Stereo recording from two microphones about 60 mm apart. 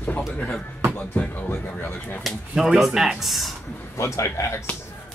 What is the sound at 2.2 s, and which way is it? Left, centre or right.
Speech, centre.